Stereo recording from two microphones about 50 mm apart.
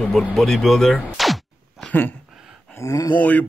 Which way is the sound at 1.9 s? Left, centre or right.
Left.